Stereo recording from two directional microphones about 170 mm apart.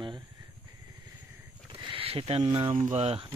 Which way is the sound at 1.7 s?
30° right (ahead or behind).